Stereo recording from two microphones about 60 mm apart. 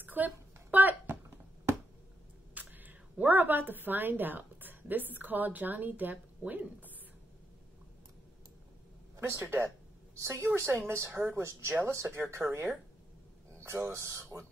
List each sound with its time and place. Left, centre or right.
0.0 s a sound: right
2.5 s speech: right
9.2 s a woman's voice: right
10.1 s a woman's voice: right
12.4 s speech: centre
13.6 s speech: right